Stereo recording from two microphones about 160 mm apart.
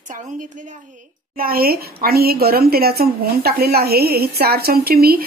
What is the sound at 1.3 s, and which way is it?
Speech, 65° right (ahead or behind).